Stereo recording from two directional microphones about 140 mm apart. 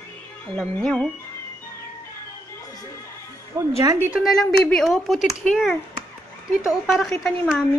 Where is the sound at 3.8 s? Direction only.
20° right (ahead or behind).